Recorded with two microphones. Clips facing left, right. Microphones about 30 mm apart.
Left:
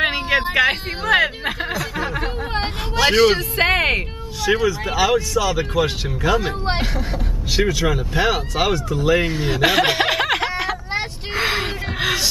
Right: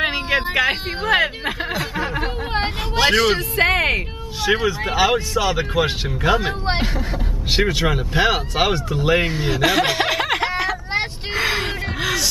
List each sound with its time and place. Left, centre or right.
0.0 s a sound: centre
1.0 s speech: centre
2.0 s a sound: centre
3.1 s speech: centre
4.6 s speech: right
7.5 s speech: right
8.7 s speech: right
9.2 s speech: centre
9.5 s chuckle: centre
11.3 s a sound: centre